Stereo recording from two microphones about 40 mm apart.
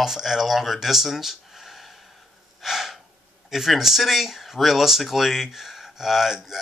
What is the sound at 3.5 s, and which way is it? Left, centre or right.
Speech, centre.